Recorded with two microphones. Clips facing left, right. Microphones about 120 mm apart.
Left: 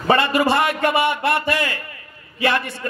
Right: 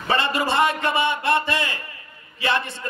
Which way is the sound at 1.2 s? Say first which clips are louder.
Left 2 dB; 25° right (ahead or behind).